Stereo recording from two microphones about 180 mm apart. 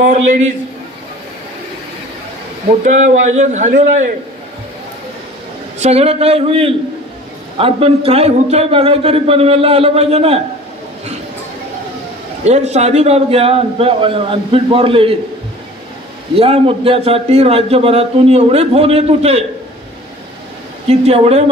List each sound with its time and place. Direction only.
0.0 s a man's voice: 40° right (ahead or behind)
2.8 s a man's voice: 40° right (ahead or behind)
5.8 s a man's voice: 35° right (ahead or behind)
12.4 s a man's voice: 40° right (ahead or behind)
16.3 s a man's voice: 35° right (ahead or behind)
20.9 s a man's voice: 35° right (ahead or behind)